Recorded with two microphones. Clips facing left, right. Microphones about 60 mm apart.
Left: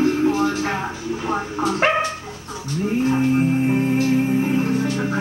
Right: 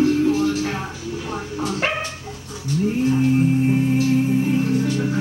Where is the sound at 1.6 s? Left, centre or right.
Left.